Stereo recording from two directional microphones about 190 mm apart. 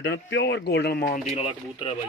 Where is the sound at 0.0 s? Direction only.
65° left (ahead or behind).